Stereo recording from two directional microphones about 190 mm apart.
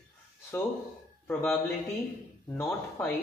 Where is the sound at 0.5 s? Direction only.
15° left (ahead or behind).